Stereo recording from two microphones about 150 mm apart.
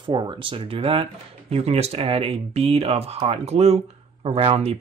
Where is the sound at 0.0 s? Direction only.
30° right (ahead or behind).